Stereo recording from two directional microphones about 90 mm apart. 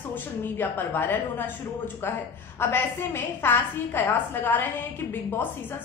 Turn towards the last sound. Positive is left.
turn(degrees=25)  # may be behind; listen again after turning